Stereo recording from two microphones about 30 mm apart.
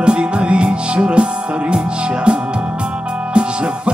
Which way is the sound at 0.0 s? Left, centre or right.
Right.